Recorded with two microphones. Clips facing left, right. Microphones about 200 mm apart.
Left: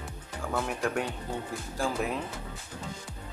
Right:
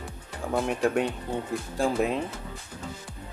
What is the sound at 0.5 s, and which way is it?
Speech, 25° right (ahead or behind).